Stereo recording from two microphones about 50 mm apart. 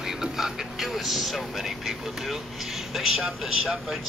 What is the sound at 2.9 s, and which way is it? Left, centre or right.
Speech, centre.